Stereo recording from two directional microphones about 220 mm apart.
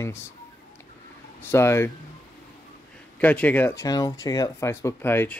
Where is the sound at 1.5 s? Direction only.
10° left (ahead or behind).